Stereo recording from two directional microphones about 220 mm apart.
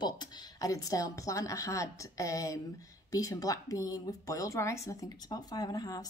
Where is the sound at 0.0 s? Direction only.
15° left (ahead or behind).